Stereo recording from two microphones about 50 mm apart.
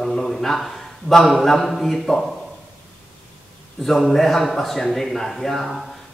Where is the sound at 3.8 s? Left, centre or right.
Centre.